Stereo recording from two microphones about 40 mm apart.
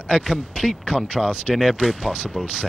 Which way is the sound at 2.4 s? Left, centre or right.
Right.